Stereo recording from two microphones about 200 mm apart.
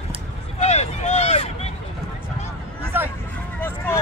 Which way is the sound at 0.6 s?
35° left (ahead or behind).